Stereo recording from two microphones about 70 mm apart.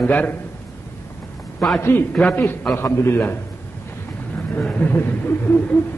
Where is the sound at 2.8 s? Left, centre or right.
Left.